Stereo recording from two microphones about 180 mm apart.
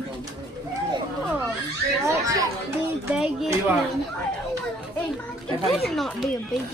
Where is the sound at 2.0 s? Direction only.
20° right (ahead or behind).